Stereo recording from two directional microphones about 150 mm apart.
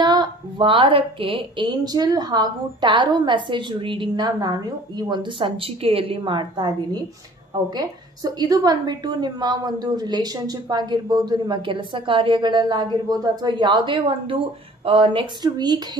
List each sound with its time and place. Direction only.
0.0 s a woman's voice: 30° right (ahead or behind)